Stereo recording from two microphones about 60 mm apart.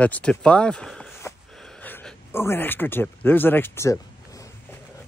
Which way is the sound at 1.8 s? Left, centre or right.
Left.